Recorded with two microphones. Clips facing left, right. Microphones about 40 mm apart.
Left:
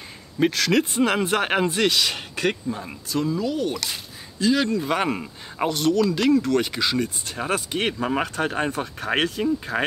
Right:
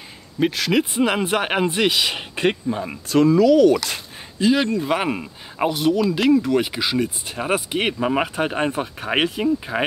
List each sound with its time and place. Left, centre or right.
0.4 s speech: centre; by 2.8 s right
3.3 s speech: right
4.4 s speech: centre